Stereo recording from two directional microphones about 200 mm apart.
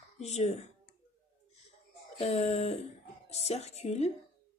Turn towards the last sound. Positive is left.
turn(degrees=35)  # may be behind; listen again after turning